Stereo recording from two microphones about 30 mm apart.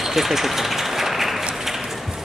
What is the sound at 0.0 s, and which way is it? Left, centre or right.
Run, centre.